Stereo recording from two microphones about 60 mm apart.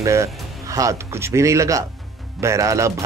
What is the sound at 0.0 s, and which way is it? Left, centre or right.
Speech, right.